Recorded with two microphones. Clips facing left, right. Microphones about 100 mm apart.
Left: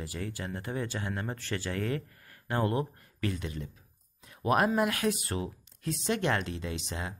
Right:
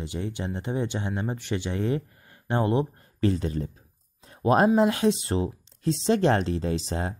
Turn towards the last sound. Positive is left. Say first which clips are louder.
# right 8 dB
turn(degrees=-35)  # may be behind; listen again after turning